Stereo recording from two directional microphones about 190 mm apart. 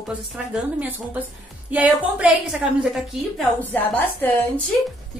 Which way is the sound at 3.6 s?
10° left (ahead or behind).